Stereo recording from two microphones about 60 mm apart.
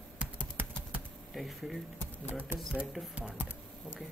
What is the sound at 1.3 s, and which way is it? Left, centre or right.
Speech, centre.